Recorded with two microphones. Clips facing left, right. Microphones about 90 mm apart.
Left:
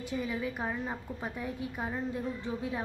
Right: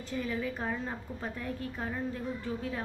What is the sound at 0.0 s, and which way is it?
A woman's voice, 15° left (ahead or behind).